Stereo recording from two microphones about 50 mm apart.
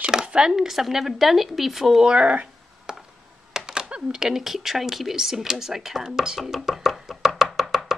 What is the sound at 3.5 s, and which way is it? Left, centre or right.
Speech, centre.